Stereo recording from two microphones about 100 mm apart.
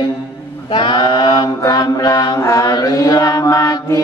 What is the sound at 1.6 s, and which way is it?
Mantra, 40° left (ahead or behind).